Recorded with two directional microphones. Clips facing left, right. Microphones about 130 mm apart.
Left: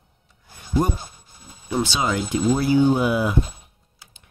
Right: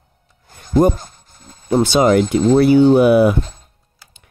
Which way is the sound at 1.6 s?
45° right (ahead or behind).